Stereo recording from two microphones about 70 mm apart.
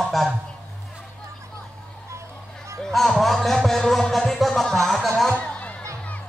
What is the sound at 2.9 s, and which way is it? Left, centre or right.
Music, centre.